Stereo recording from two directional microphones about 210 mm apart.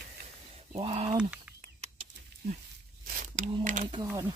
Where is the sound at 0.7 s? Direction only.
25° right (ahead or behind).